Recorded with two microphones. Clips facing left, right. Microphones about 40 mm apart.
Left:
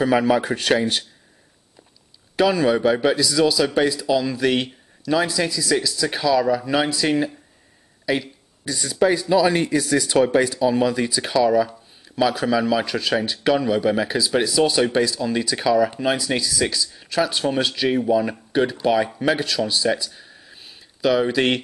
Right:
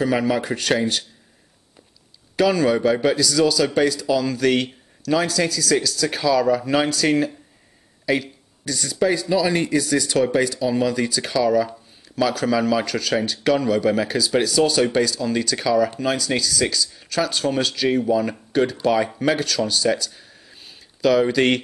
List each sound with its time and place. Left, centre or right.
0.2 s a man's voice: left
2.3 s a man's voice: left; by 6.9 s centre
6.9 s a man's voice: centre
8.0 s a sound: centre
8.6 s a man's voice: left; by 12.8 s centre
12.8 s a man's voice: left
20.2 s a sound: centre